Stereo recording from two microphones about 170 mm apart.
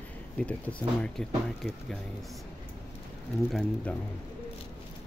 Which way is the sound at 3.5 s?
5° left (ahead or behind).